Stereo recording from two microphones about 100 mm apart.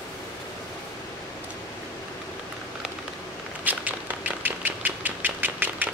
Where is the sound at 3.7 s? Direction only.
15° right (ahead or behind).